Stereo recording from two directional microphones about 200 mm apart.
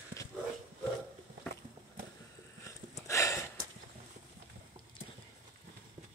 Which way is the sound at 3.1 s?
15° left (ahead or behind).